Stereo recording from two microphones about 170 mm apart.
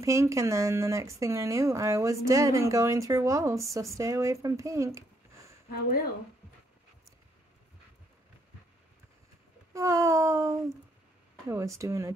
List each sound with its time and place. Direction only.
0.0 s speech: 20° right (ahead or behind)
5.7 s speech: 65° left (ahead or behind)
9.8 s speech: 20° right (ahead or behind)